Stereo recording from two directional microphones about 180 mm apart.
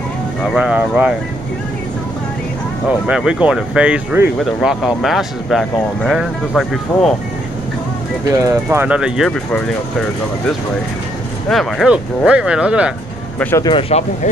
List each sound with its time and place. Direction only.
0.5 s speech: 5° right (ahead or behind)
3.1 s speech: 5° right (ahead or behind)
8.3 s speech: 15° right (ahead or behind); by 9.6 s centre (ahead or behind)
11.4 s speech: centre (ahead or behind)
13.4 s speech: 10° left (ahead or behind)
13.7 s speech: 30° left (ahead or behind)